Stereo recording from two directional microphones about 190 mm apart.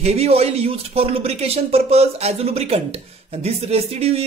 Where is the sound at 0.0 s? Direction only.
35° right (ahead or behind).